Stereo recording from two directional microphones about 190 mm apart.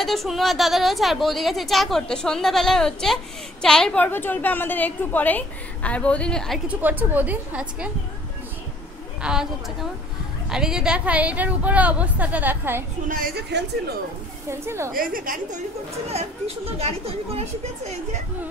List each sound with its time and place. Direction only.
0.0 s a woman's voice: centre (ahead or behind)
6.8 s a woman's voice: 10° right (ahead or behind)
9.2 s a woman's voice: 5° right (ahead or behind)
13.1 s a woman's voice: 55° right (ahead or behind)
14.5 s a woman's voice: 15° right (ahead or behind)
14.9 s a woman's voice: 50° right (ahead or behind)
16.1 s speech: 35° right (ahead or behind)